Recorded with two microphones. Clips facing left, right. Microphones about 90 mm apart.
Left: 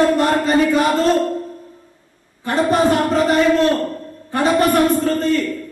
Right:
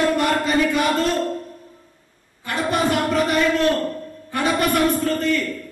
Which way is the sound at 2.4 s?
35° left (ahead or behind).